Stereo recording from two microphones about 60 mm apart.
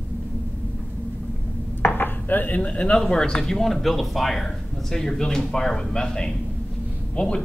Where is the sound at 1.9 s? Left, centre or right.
Left.